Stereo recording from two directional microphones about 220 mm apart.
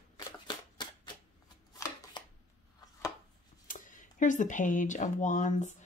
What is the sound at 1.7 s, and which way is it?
Chopping, 15° left (ahead or behind).